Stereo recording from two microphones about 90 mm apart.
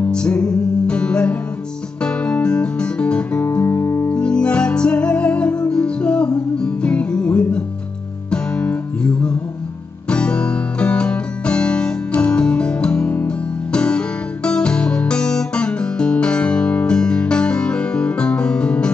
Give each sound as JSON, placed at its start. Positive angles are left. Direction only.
{"t": 0.1, "sound": "music", "side_deg": 10}
{"t": 3.6, "sound": "music", "side_deg": 25}
{"t": 4.1, "sound": "music", "side_deg": 10}